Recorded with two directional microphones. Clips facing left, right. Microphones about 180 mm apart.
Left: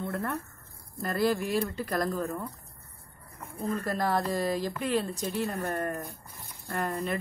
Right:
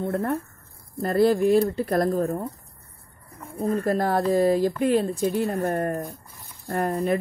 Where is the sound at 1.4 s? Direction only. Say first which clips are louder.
Right 10 dB; 40° right (ahead or behind).